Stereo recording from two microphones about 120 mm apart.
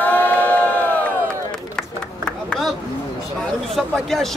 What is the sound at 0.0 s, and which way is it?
Crowd, 15° left (ahead or behind).